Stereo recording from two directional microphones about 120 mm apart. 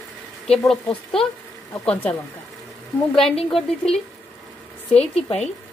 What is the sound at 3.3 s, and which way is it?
Speech, 55° left (ahead or behind).